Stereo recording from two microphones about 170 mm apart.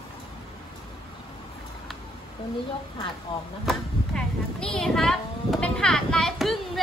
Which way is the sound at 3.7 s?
5° left (ahead or behind).